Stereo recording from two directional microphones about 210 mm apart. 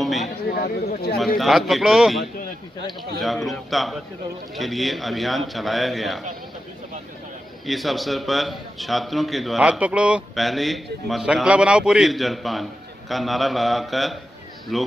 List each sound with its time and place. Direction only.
0.0 s a sound: centre (ahead or behind)
0.5 s speech: 45° left (ahead or behind)
1.4 s a man's voice: centre (ahead or behind)
7.6 s a man's voice: centre (ahead or behind)